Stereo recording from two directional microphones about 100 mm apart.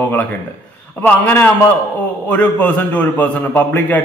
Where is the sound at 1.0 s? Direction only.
15° left (ahead or behind).